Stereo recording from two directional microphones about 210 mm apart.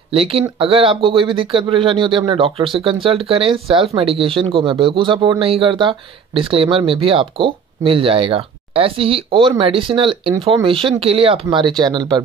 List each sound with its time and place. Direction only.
0.1 s speech: 25° right (ahead or behind)